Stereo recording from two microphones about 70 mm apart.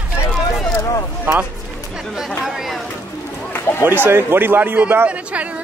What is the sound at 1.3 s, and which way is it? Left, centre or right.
Speech, right.